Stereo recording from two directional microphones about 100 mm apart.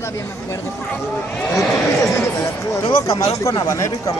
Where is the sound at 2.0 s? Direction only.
30° left (ahead or behind).